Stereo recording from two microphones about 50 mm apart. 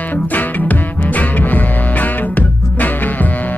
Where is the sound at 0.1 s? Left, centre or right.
Left.